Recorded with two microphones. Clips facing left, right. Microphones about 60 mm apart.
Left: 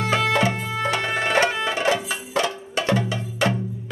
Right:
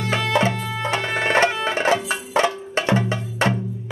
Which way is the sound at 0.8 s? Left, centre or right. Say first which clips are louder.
Right 1 dB; right.